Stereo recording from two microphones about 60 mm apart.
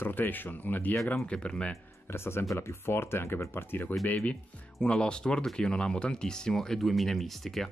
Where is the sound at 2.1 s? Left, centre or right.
Left.